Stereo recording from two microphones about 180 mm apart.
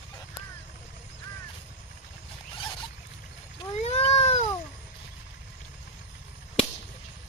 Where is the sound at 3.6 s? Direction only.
35° left (ahead or behind).